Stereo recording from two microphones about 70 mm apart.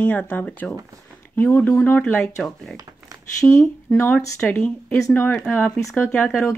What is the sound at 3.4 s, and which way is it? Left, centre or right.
Speech, left.